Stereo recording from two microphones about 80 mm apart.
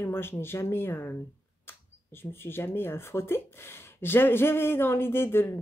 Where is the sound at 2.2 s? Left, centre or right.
Left.